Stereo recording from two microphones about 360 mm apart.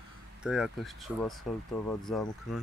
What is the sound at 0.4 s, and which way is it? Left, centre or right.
Speech, centre.